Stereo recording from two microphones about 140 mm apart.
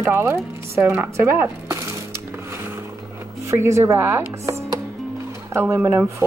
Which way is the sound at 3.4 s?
20° right (ahead or behind).